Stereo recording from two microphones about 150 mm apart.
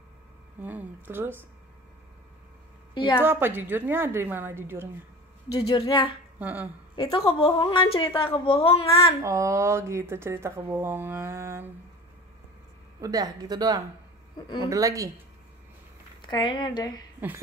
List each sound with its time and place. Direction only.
0.6 s speech: 10° right (ahead or behind)
2.9 s a sound: 30° left (ahead or behind)
3.3 s speech: 15° right (ahead or behind)
5.8 s a woman's voice: 35° left (ahead or behind)
6.4 s speech: 10° right (ahead or behind)
7.0 s a woman's voice: 35° left (ahead or behind)
9.2 s speech: 20° right (ahead or behind)
13.0 s speech: 25° right (ahead or behind)
16.2 s a woman's voice: 30° left (ahead or behind)